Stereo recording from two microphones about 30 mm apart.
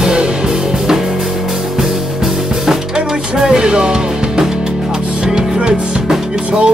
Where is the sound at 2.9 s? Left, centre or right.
Right.